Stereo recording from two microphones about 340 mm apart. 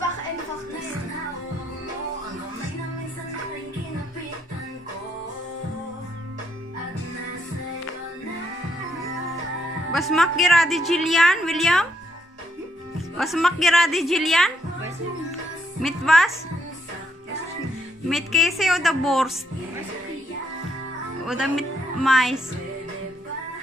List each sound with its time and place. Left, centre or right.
9.9 s a woman's voice: centre
13.2 s a woman's voice: centre
15.8 s speech: centre
18.0 s a woman's voice: centre
21.3 s speech: centre